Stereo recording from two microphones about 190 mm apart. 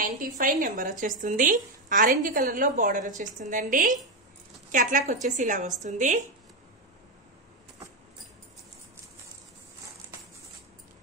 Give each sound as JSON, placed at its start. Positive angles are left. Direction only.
{"t": 0.0, "sound": "speech", "side_deg": -45}